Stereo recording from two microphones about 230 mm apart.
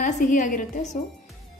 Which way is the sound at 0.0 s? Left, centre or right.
Left.